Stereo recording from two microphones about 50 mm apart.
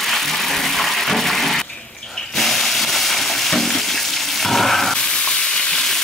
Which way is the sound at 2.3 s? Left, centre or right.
Centre.